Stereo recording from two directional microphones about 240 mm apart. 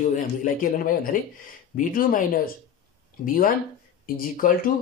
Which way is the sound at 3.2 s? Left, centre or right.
Left.